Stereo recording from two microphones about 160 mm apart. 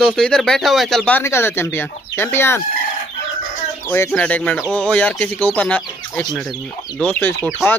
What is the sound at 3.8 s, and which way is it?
Speech, 15° left (ahead or behind).